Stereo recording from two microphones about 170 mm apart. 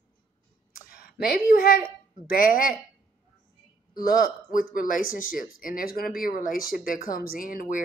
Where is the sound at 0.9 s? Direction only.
60° left (ahead or behind).